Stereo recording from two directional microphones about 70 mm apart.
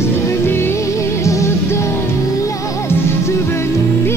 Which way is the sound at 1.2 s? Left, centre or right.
Left.